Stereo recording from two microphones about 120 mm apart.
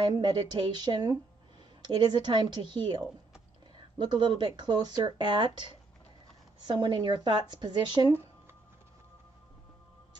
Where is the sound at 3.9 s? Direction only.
40° right (ahead or behind).